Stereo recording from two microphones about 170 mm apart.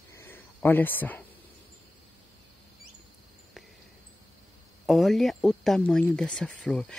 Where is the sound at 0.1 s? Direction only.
15° left (ahead or behind).